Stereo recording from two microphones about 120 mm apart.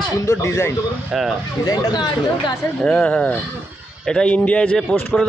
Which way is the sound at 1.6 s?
30° left (ahead or behind).